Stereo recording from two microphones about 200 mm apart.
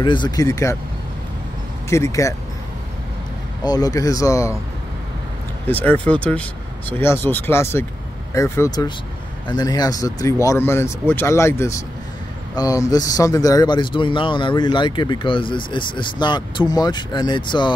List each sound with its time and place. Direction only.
0.0 s speech: 20° left (ahead or behind)
1.9 s speech: 15° left (ahead or behind)
3.6 s speech: 20° left (ahead or behind)
5.7 s speech: 10° left (ahead or behind); by 17.7 s 25° left (ahead or behind)